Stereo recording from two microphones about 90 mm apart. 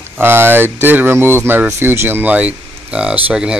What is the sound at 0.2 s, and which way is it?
Speech, 25° right (ahead or behind).